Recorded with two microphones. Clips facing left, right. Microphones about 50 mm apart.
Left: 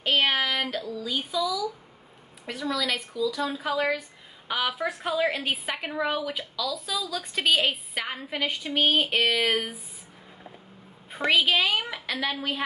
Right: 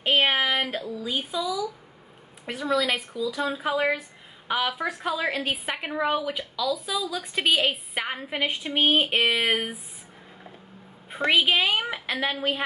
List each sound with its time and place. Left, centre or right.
0.0 s speech: right
4.6 s a woman's voice: centre
5.8 s speech: centre
7.9 s speech: centre
11.2 s speech: centre